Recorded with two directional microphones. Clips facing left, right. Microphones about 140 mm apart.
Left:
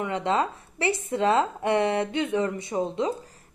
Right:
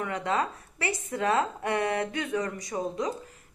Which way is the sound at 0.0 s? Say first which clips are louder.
Left 3 dB; 25° left (ahead or behind).